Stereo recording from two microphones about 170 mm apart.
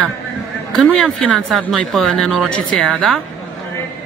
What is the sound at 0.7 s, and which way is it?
Speech, centre (ahead or behind).